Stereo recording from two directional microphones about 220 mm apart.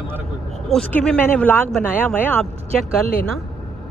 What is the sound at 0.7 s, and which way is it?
Speech, 5° left (ahead or behind).